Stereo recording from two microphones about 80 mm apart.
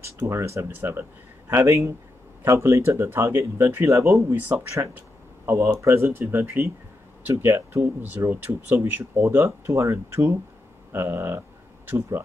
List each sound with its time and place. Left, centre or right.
0.2 s speech: right
1.5 s speech: right
5.5 s speech: right
9.2 s speech: right